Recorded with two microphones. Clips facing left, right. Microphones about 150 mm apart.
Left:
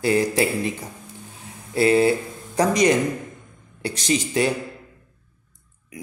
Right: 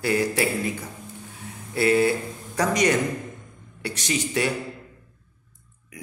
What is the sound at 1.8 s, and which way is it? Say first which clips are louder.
Speech: left 3 dB; 25° left (ahead or behind).